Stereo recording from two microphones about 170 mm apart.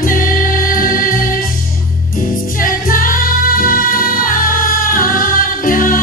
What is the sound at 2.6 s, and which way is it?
Music, 55° left (ahead or behind).